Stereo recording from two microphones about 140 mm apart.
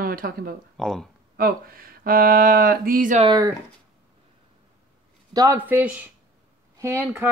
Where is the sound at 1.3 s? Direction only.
90° right.